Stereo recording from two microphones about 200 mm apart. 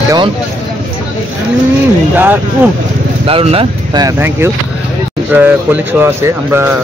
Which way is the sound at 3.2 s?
30° right (ahead or behind).